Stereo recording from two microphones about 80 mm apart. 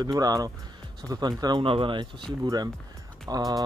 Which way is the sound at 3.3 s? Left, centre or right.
Right.